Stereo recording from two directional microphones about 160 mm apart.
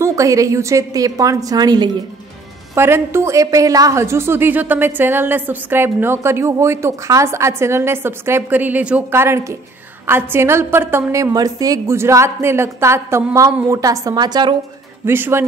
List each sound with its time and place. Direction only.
0.0 s a woman's voice: 20° right (ahead or behind)
2.7 s a woman's voice: 15° right (ahead or behind)
15.0 s a woman's voice: 15° right (ahead or behind)